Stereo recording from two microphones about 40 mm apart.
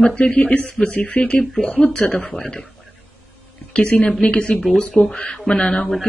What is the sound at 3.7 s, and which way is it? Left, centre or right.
Speech, left.